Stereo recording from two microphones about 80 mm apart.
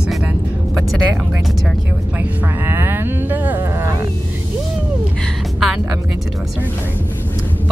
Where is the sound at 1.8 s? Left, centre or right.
Right.